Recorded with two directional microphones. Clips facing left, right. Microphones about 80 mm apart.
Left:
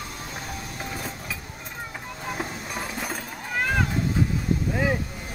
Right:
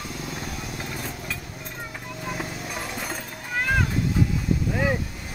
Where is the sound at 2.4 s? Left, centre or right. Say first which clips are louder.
Even; centre.